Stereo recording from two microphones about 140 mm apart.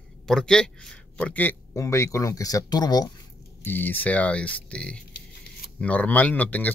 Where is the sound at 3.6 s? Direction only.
15° left (ahead or behind).